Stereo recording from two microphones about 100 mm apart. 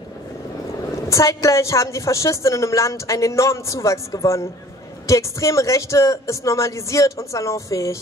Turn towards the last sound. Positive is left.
turn(degrees=30)  # may be behind; listen again after turning